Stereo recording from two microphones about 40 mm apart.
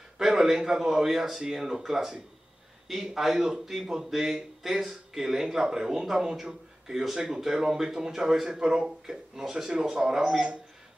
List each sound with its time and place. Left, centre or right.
0.2 s speech: centre